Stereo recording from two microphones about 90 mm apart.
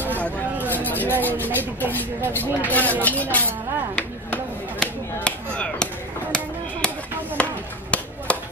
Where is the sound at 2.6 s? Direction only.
20° left (ahead or behind).